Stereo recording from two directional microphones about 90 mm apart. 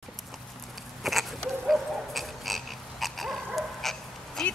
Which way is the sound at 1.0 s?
Centre (ahead or behind).